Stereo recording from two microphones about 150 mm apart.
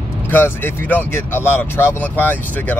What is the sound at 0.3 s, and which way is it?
Speech, 15° left (ahead or behind).